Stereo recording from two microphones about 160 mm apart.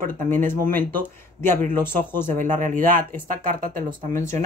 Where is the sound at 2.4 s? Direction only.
55° right (ahead or behind).